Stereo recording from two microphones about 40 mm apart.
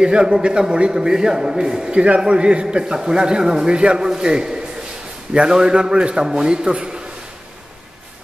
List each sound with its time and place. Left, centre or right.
0.0 s a man's voice: right
1.9 s a man's voice: right